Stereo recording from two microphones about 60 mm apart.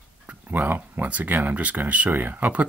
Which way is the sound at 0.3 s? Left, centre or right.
Right.